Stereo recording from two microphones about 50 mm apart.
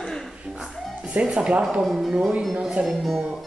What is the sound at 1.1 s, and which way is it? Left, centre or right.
Speech, right.